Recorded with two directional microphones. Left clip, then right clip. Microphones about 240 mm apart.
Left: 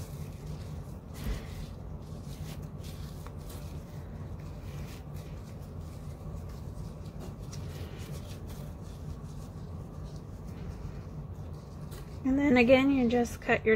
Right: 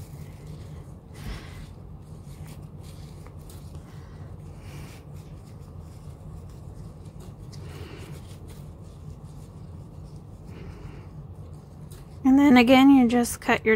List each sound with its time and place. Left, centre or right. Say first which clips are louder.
12.2 s a woman's voice: right 8 dB; right